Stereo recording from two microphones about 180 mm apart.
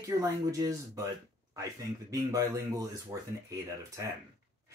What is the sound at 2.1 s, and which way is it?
Speech, 20° right (ahead or behind).